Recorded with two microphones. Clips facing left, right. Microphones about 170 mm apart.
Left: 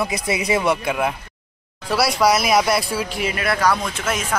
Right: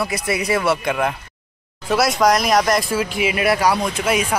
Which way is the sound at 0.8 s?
5° left (ahead or behind).